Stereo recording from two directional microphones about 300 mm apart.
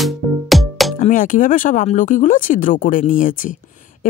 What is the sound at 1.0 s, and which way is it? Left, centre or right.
Speech, left.